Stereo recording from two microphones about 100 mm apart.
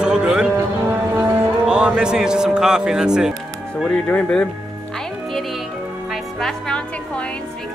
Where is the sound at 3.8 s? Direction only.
15° left (ahead or behind).